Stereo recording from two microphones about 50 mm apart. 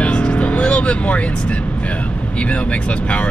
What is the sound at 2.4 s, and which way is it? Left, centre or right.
Speech, left.